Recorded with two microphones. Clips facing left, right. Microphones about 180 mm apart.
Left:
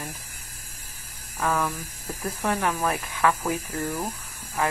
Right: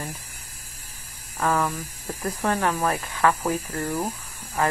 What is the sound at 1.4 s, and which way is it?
Speech, centre (ahead or behind).